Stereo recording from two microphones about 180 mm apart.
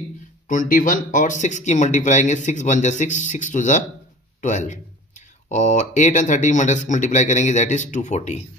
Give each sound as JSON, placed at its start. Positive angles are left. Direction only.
{"t": 0.5, "sound": "speech", "side_deg": 50}